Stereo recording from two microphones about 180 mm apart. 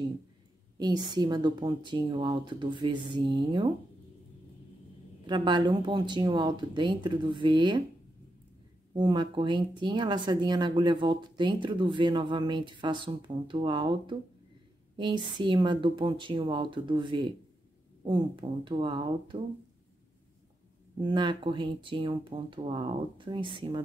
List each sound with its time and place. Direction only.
0.7 s speech: 25° right (ahead or behind)
5.2 s speech: 25° right (ahead or behind)
8.9 s speech: 25° right (ahead or behind)
21.0 s speech: 25° right (ahead or behind)